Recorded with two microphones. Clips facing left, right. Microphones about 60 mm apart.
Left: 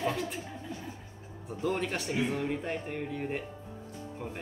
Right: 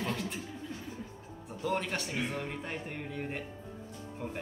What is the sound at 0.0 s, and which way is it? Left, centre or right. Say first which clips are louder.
Speech: left 3 dB; centre.